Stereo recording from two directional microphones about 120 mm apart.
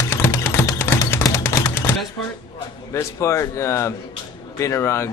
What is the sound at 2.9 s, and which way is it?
Speech, 25° left (ahead or behind).